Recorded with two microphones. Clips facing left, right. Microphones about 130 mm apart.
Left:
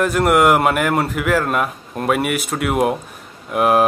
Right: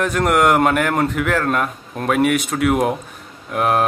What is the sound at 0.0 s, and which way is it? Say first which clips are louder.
Speech: left 2 dB; 5° left (ahead or behind).